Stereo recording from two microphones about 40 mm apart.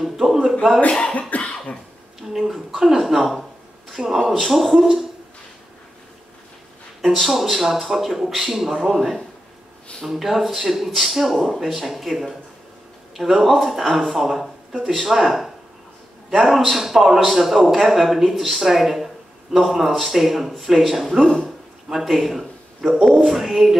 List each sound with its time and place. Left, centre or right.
0.0 s a man's voice: centre
1.3 s cough: left
2.3 s a man's voice: centre
7.0 s a man's voice: centre
21.2 s speech: centre
21.9 s a man's voice: centre